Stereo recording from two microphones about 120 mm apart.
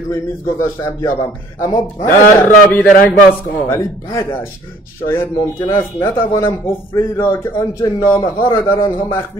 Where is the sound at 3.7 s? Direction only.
25° left (ahead or behind).